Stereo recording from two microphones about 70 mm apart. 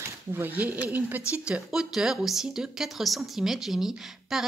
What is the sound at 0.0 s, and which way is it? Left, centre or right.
Speech, right.